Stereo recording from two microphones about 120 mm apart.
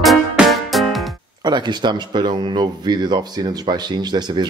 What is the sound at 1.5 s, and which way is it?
Speech, 35° right (ahead or behind).